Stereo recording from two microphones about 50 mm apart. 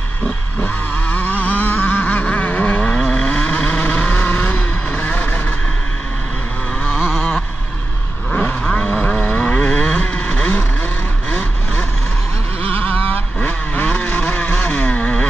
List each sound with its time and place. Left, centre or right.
0.6 s vehicle: left
3.0 s vehicle: centre; by 5.4 s left
7.1 s a sound: centre
8.4 s vehicle: left
12.7 s vehicle: left